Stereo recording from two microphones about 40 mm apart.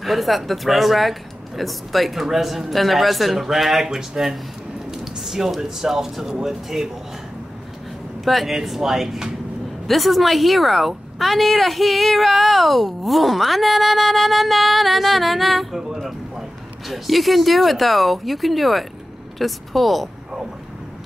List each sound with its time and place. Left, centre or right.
0.0 s speech: centre
3.8 s speech: centre
8.3 s speech: centre